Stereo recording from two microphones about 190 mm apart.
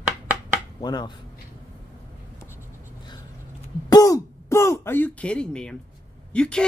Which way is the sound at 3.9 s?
20° left (ahead or behind).